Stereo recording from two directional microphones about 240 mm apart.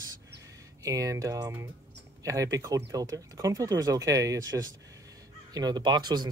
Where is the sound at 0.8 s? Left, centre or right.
Centre.